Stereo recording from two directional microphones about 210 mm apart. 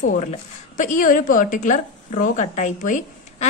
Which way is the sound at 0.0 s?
40° left (ahead or behind).